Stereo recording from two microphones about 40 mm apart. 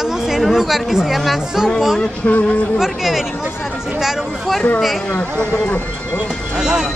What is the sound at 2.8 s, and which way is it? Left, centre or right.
Speech, centre.